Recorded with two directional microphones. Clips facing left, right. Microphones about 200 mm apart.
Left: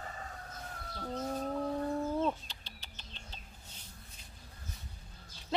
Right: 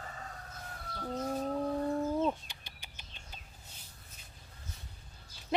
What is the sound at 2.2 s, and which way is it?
Bird, 10° right (ahead or behind).